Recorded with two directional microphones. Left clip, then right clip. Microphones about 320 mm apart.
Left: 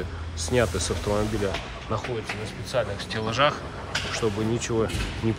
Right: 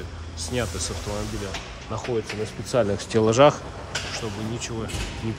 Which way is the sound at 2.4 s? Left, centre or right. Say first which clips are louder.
Right 4 dB; right.